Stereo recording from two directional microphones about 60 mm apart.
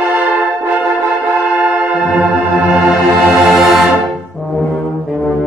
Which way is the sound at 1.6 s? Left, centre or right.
Centre.